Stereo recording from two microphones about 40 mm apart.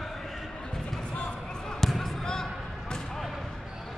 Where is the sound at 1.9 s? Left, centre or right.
Centre.